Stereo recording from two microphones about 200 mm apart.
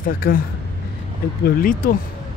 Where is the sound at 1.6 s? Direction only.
45° left (ahead or behind).